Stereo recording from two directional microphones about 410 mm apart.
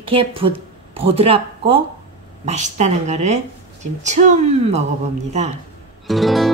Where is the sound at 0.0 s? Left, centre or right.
Centre.